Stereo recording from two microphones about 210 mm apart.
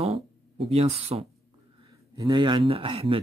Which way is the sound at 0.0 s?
30° right (ahead or behind).